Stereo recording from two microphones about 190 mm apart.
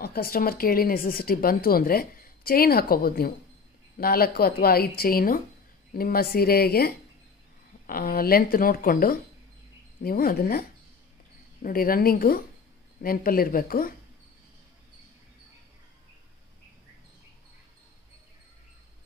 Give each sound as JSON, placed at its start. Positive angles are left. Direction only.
{"t": 0.0, "sound": "a woman's voice", "side_deg": 55}
{"t": 11.6, "sound": "a woman's voice", "side_deg": 50}